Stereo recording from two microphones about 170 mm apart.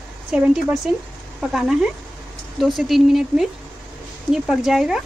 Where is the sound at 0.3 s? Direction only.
5° right (ahead or behind).